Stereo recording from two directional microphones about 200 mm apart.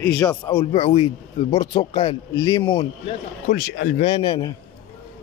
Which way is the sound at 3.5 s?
45° left (ahead or behind).